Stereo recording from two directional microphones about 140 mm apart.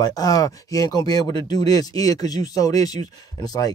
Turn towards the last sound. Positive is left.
turn(degrees=30)  # may be behind; listen again after turning